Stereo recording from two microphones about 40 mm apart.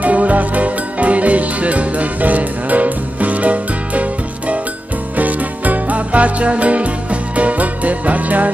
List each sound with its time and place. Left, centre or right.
0.0 s music: right